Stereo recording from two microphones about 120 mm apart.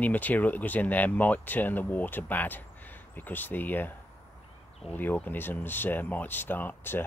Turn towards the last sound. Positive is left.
turn(degrees=15)  # may be behind; listen again after turning